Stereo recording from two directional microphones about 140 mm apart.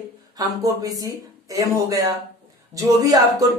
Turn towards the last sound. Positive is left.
turn(degrees=-25)  # may be behind; listen again after turning